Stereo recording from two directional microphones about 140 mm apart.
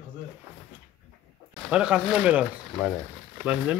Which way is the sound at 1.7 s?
5° right (ahead or behind).